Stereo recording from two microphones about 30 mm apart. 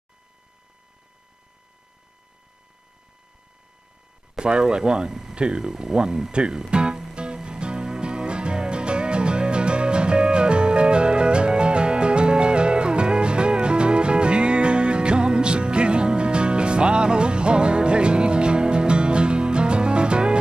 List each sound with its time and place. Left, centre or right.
4.4 s speech: right
5.6 s speech: centre
6.7 s music: right